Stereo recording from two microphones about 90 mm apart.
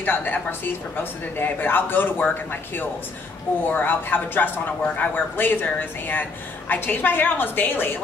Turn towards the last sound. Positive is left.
turn(degrees=25)  # may be behind; listen again after turning